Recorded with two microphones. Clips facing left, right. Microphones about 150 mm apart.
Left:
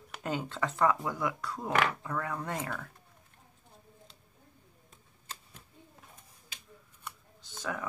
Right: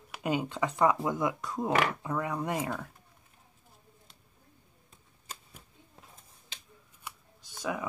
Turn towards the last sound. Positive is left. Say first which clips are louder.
# right 3 dB
turn(degrees=-15)  # may be behind; listen again after turning